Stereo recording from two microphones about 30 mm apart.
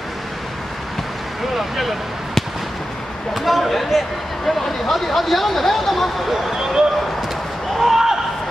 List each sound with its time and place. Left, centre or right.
1.5 s speech: centre
3.3 s speech: centre
6.3 s speech: centre
7.7 s basketball bounce: centre